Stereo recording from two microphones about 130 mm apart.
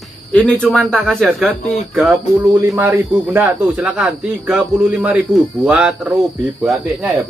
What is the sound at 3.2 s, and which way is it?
Speech, 15° right (ahead or behind).